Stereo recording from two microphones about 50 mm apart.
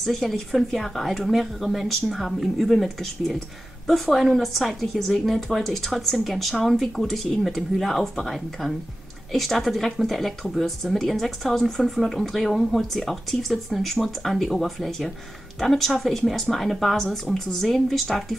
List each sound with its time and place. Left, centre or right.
0.0 s speech: centre